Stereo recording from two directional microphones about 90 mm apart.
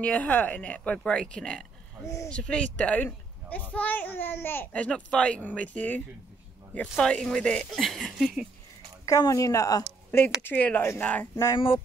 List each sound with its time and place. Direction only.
0.0 s a child's voice: 15° left (ahead or behind)
4.7 s speech: 10° left (ahead or behind)
9.0 s a woman's voice: 40° left (ahead or behind)
10.1 s a child's voice: 25° left (ahead or behind)
11.5 s speech: 75° left (ahead or behind)